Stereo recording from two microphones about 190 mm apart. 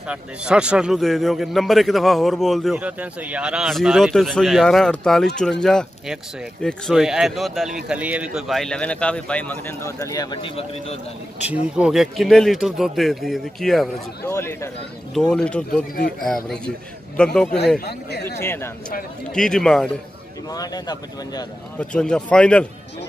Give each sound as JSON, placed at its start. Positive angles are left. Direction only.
{"t": 0.1, "sound": "a man's voice", "side_deg": -5}
{"t": 11.4, "sound": "a man's voice", "side_deg": -5}
{"t": 14.2, "sound": "speech", "side_deg": 15}
{"t": 15.1, "sound": "a man's voice", "side_deg": 5}
{"t": 17.2, "sound": "a man's voice", "side_deg": 5}
{"t": 17.7, "sound": "speech", "side_deg": 60}
{"t": 18.4, "sound": "a man's voice", "side_deg": 15}
{"t": 20.4, "sound": "speech", "side_deg": 20}
{"t": 21.7, "sound": "a man's voice", "side_deg": 5}